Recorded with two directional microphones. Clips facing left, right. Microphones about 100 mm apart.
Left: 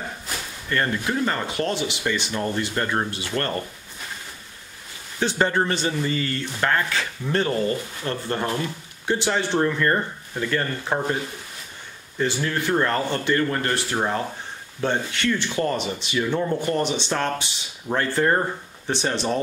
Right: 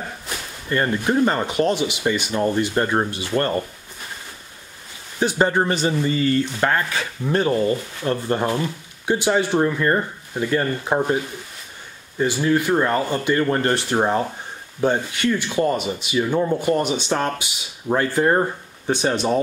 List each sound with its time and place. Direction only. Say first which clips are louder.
0.7 s speech: right 4 dB; 20° right (ahead or behind)
5.2 s rub: right 3 dB; 20° right (ahead or behind)
12.2 s rub: right 5 dB; 15° right (ahead or behind)
13.5 s speech: right 5 dB; 30° right (ahead or behind)
14.8 s rub: right 4 dB; 15° right (ahead or behind)